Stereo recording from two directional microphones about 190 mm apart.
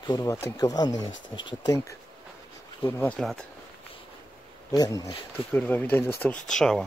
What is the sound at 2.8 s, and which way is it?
Speech, 15° left (ahead or behind).